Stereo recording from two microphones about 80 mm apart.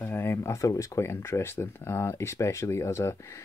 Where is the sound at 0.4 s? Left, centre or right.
Left.